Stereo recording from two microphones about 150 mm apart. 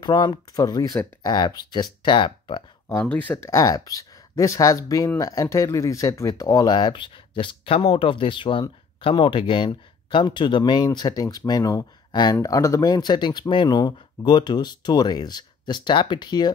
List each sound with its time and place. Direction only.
0.0 s speech: 30° left (ahead or behind)
2.9 s speech: 15° left (ahead or behind); by 16.5 s 30° left (ahead or behind)